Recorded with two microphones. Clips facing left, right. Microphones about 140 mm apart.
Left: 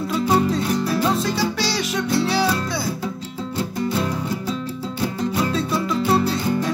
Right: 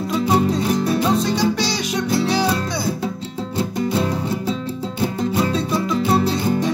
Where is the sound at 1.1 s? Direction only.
Centre (ahead or behind).